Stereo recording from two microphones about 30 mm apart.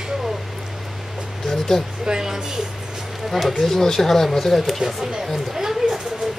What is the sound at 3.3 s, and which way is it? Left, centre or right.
Speech, centre.